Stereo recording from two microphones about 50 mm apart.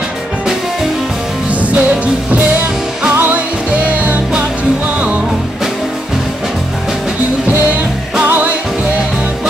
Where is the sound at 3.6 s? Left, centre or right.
Right.